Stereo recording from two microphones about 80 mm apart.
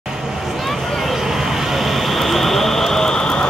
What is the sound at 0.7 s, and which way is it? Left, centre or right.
Vehicle, centre.